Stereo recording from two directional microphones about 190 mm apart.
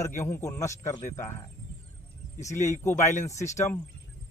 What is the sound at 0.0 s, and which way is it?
A man's voice, 15° left (ahead or behind).